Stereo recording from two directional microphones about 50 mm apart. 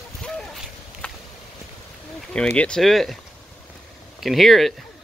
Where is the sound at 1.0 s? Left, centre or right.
Left.